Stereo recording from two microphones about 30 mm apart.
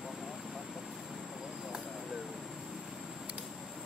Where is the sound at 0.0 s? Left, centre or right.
Centre.